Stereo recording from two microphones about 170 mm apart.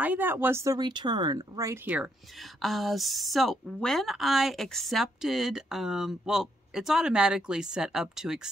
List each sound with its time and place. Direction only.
0.0 s speech: 10° right (ahead or behind)
2.6 s a woman's voice: centre (ahead or behind)